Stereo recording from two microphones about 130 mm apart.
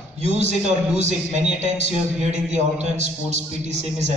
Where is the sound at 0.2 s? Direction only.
60° right (ahead or behind).